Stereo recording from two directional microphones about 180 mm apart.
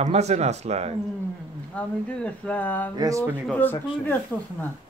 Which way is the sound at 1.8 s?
5° left (ahead or behind).